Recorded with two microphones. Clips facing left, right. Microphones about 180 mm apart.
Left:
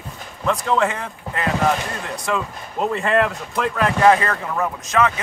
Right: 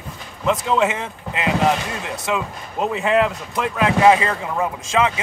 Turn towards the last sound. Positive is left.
turn(degrees=-10)  # may be behind; listen again after turning